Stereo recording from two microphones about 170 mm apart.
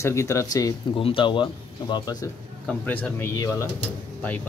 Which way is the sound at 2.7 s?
10° left (ahead or behind).